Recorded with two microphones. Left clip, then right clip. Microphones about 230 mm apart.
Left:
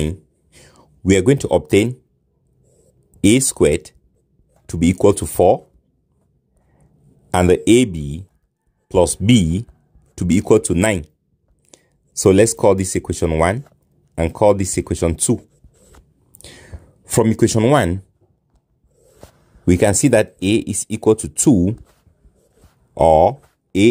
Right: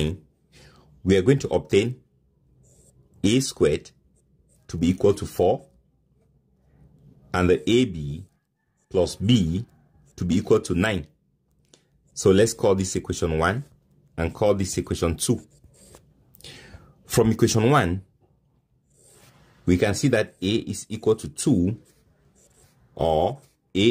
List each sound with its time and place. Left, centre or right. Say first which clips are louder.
0.0 s a sound: left 4 dB; left
3.2 s speech: left 7 dB; left
7.2 s speech: left 7 dB; left
16.3 s a sound: left 3 dB; left
19.6 s speech: left 7 dB; left
22.9 s speech: left 10 dB; left